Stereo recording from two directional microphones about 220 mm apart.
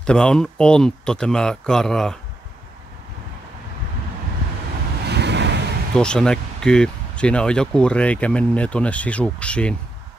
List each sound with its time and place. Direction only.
0.0 s speech: 5° left (ahead or behind)
5.0 s vehicle: 50° right (ahead or behind)
5.9 s speech: 5° left (ahead or behind)